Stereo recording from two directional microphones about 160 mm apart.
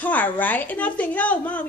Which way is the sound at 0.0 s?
10° left (ahead or behind).